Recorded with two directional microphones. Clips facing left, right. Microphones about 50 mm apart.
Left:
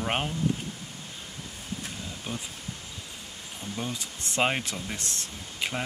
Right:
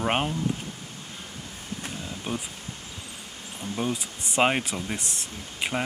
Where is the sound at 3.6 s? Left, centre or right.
Centre.